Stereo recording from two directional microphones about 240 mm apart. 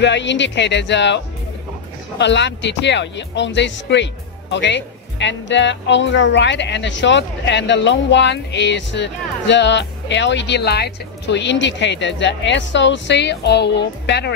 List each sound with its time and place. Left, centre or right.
0.0 s speech: left